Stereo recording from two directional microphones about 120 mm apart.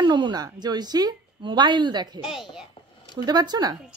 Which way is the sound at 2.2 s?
5° right (ahead or behind).